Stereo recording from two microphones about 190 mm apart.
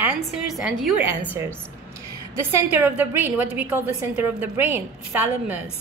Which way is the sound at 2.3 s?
10° right (ahead or behind).